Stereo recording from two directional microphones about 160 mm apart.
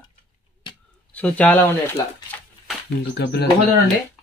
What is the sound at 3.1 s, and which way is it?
Speech, 90° left.